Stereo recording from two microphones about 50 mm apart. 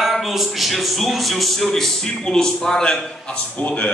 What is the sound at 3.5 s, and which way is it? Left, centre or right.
Speech, left.